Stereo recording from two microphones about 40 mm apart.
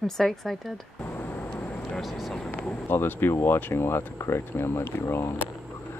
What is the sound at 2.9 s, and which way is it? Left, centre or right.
Speech, left.